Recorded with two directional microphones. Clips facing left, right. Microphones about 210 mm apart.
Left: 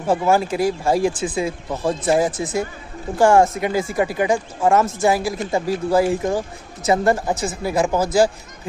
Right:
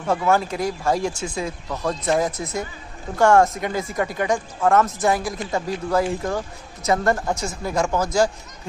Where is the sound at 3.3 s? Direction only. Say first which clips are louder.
Left 2 dB; 10° left (ahead or behind).